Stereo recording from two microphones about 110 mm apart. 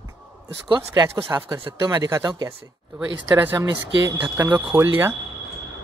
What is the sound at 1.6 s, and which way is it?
Speech, 40° right (ahead or behind).